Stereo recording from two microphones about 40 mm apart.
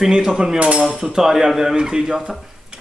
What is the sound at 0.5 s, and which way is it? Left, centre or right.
Speech, right.